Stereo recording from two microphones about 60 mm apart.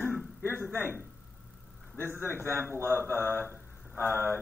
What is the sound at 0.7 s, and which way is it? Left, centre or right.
Speech, left.